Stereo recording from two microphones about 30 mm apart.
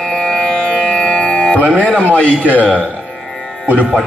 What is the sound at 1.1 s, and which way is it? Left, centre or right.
Music, left.